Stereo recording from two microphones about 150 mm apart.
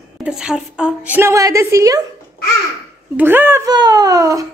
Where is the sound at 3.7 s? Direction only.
25° right (ahead or behind).